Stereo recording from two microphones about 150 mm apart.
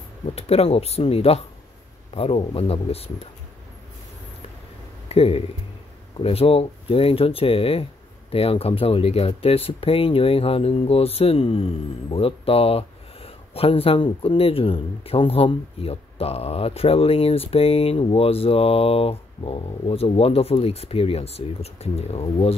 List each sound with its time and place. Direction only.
0.3 s speech: 40° left (ahead or behind)
5.0 s speech: 45° left (ahead or behind)